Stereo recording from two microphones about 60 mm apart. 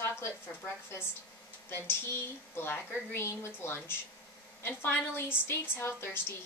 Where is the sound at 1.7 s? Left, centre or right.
Left.